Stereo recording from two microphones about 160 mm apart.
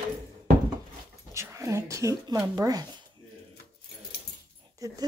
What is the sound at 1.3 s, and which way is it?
Speech, 20° right (ahead or behind).